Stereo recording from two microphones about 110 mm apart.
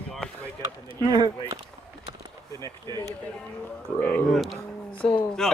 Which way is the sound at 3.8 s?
15° left (ahead or behind).